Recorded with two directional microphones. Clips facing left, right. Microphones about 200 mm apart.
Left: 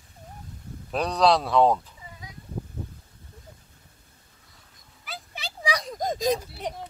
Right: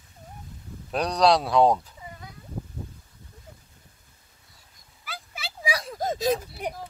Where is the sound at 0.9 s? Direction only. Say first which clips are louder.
Even; centre (ahead or behind).